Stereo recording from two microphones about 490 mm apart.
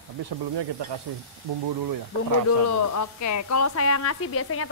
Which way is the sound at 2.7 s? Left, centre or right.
Left.